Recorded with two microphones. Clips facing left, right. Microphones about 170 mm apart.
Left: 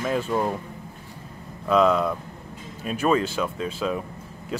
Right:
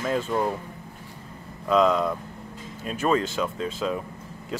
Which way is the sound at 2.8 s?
15° left (ahead or behind).